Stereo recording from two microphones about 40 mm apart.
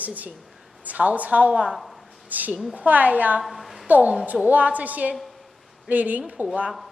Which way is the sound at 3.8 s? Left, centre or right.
Right.